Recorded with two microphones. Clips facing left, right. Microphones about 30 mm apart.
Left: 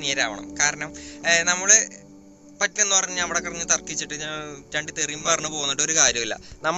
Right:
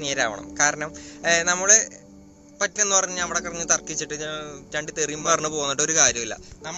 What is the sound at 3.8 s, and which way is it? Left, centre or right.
Speech, left.